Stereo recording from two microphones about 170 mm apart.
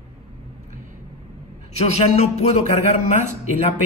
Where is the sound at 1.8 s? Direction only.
40° left (ahead or behind).